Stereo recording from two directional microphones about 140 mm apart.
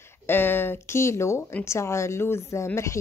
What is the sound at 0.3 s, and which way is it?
Speech, 15° left (ahead or behind).